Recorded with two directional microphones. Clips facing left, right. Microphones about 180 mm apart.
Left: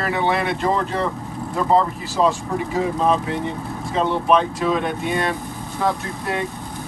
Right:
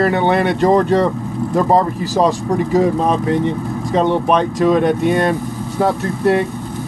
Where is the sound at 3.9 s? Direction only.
40° right (ahead or behind).